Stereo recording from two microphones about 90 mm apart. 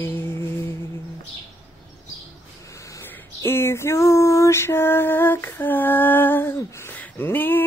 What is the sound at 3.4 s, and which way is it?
Female singing, 30° left (ahead or behind).